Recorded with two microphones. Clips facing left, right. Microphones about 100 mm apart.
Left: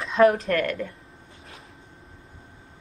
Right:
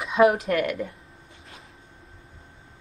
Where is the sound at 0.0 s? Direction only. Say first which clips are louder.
Left 1 dB; 5° right (ahead or behind).